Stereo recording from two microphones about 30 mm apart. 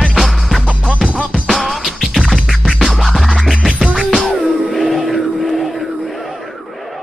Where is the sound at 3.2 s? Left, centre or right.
Centre.